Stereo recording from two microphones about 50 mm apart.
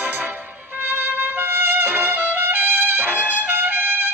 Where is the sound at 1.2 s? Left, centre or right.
Right.